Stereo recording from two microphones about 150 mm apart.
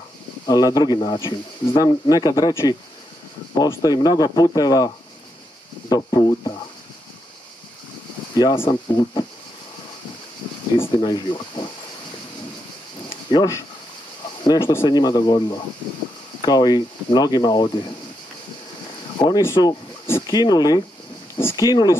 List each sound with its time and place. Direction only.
0.5 s speech: 25° left (ahead or behind)
8.6 s speech: 30° left (ahead or behind)
10.8 s speech: 35° left (ahead or behind)
13.3 s speech: 30° left (ahead or behind)
14.6 s speech: 15° left (ahead or behind)
14.9 s speech: 25° left (ahead or behind)
19.1 s speech: 30° left (ahead or behind)
19.4 s speech: 20° left (ahead or behind)